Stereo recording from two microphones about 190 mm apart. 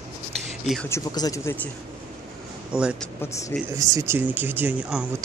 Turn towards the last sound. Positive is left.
turn(degrees=-5)  # may be behind; listen again after turning